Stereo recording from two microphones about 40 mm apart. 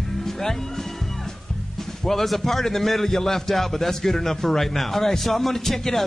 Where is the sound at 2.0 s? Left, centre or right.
Centre.